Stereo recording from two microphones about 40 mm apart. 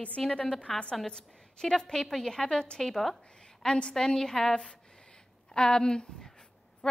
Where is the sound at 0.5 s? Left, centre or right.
Centre.